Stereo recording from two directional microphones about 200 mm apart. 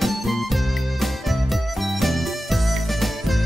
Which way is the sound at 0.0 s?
Centre (ahead or behind).